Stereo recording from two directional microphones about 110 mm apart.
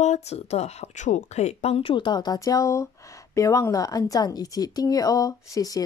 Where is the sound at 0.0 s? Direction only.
85° left.